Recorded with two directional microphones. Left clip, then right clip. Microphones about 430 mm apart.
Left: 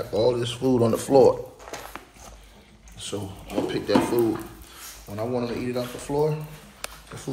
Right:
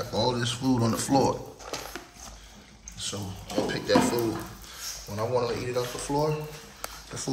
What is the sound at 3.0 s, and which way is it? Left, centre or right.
Speech, centre.